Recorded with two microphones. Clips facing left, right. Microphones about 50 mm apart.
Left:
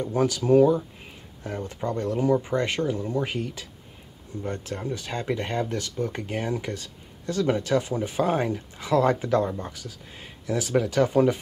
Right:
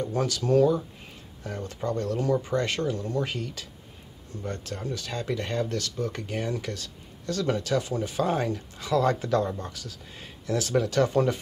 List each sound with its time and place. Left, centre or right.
0.0 s speech: centre